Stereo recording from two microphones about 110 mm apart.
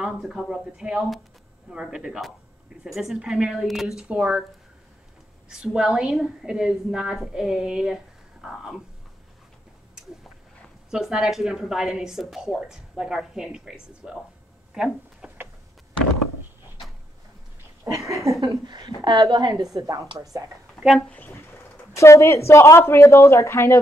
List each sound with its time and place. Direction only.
0.0 s a woman's voice: 5° right (ahead or behind)
5.6 s a woman's voice: 5° right (ahead or behind)
10.9 s a woman's voice: 5° right (ahead or behind)
14.7 s a sound: 10° right (ahead or behind)
17.8 s speech: 30° right (ahead or behind)
18.5 s a woman's voice: 40° right (ahead or behind)
20.8 s a sound: 5° left (ahead or behind)
21.1 s speech: 15° left (ahead or behind)
21.9 s speech: 25° left (ahead or behind)